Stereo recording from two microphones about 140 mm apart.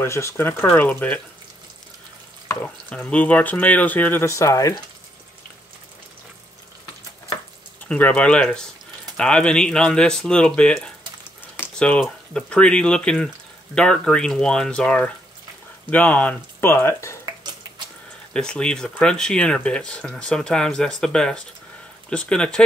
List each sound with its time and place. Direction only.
0.0 s speech: 20° left (ahead or behind)
2.4 s speech: 10° left (ahead or behind)
7.8 s speech: 10° left (ahead or behind)
18.3 s speech: 5° left (ahead or behind)